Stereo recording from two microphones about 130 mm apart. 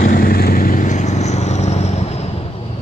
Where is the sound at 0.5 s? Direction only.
90° left; by 1.9 s 55° left (ahead or behind).